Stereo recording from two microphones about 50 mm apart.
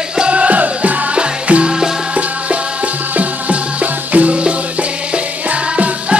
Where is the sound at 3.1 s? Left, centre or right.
Right.